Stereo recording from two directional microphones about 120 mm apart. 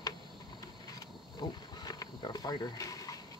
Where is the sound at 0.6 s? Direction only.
35° left (ahead or behind).